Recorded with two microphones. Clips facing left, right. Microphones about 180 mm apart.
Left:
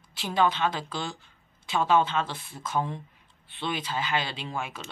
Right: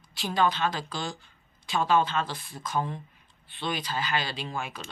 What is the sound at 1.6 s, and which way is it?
Speech, 20° left (ahead or behind).